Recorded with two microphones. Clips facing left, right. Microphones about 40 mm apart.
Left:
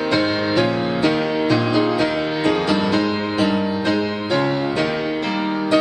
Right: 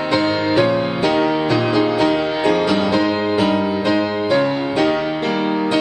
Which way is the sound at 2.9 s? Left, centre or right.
Centre.